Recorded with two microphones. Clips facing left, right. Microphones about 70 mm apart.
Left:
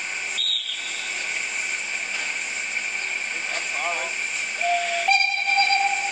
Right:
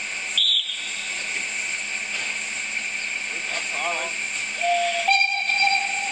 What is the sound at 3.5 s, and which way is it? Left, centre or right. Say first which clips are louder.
Vehicle: right 1 dB; centre.